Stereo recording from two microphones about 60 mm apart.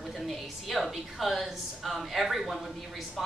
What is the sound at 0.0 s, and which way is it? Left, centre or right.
A woman's voice, centre.